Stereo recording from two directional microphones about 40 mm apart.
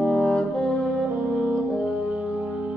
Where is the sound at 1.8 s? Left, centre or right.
Right.